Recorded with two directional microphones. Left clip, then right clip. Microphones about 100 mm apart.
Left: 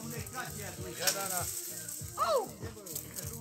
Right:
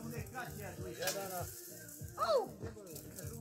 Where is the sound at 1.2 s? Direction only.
20° right (ahead or behind).